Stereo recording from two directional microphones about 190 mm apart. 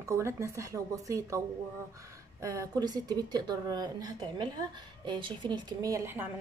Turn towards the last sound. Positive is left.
turn(degrees=-10)  # may be behind; listen again after turning